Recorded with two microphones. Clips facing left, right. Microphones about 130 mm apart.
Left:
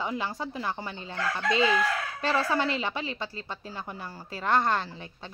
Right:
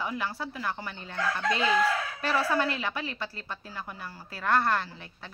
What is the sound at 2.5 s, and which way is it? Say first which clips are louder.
Speech: left 1 dB; 20° left (ahead or behind).